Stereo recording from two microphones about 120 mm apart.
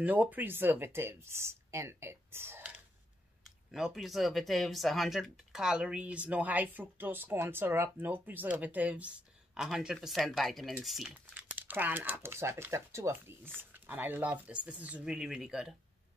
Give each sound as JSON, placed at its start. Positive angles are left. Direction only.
{"t": 0.0, "sound": "speech", "side_deg": -15}
{"t": 3.7, "sound": "speech", "side_deg": -5}
{"t": 11.5, "sound": "speech", "side_deg": -15}